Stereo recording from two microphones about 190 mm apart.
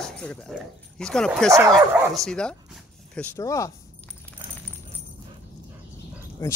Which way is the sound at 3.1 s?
15° left (ahead or behind).